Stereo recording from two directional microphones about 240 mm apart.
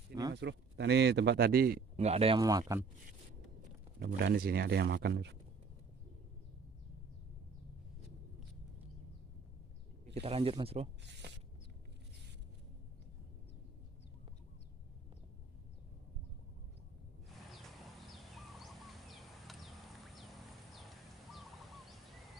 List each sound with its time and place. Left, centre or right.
0.3 s speech: right
2.0 s speech: right
4.0 s speech: right
10.2 s speech: right
18.3 s a sound: centre
20.9 s crow: centre